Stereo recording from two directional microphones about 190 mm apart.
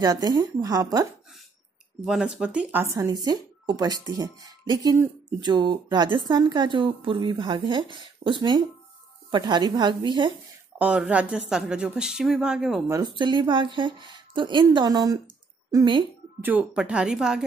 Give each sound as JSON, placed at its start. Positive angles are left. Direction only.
{"t": 0.0, "sound": "speech", "side_deg": -20}
{"t": 2.0, "sound": "a woman's voice", "side_deg": -5}
{"t": 10.8, "sound": "speech", "side_deg": -5}
{"t": 13.2, "sound": "a woman's voice", "side_deg": -25}
{"t": 16.3, "sound": "speech", "side_deg": -10}